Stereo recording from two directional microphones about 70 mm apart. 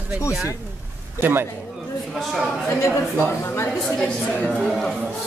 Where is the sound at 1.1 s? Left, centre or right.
Right.